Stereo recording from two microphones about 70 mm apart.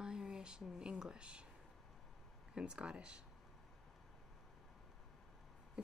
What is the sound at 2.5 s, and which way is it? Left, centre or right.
Speech, centre.